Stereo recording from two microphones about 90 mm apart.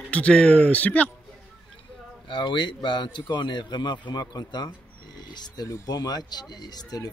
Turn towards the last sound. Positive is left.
turn(degrees=45)  # may be behind; listen again after turning